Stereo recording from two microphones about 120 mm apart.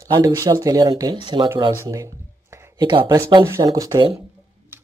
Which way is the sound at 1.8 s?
30° right (ahead or behind).